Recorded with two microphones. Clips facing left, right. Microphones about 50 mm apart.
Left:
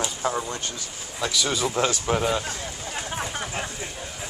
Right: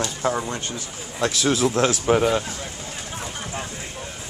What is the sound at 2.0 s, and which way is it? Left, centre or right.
Speech, centre.